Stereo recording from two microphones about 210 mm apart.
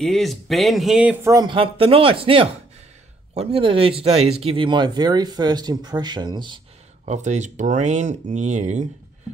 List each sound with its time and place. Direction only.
0.0 s speech: centre (ahead or behind)
1.3 s speech: 20° right (ahead or behind)
7.1 s speech: 35° right (ahead or behind)